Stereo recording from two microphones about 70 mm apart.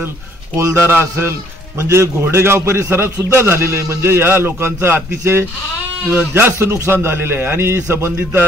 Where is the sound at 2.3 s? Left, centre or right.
Right.